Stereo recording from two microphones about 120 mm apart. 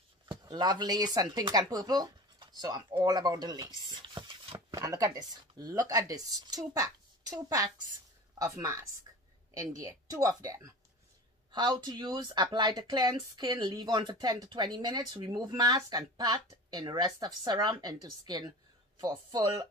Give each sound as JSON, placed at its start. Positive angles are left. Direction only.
{"t": 0.3, "sound": "speech", "side_deg": -35}
{"t": 4.7, "sound": "speech", "side_deg": -30}
{"t": 9.1, "sound": "a sound", "side_deg": -35}
{"t": 9.8, "sound": "speech", "side_deg": -30}